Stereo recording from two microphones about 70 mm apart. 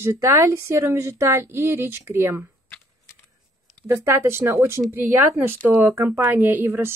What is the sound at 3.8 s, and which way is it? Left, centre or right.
Speech, right.